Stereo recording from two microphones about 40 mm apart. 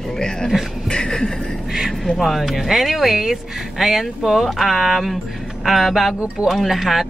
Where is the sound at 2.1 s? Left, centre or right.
Centre.